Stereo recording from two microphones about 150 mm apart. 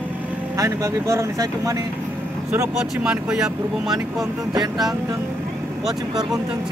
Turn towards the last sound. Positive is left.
turn(degrees=-25)  # may be behind; listen again after turning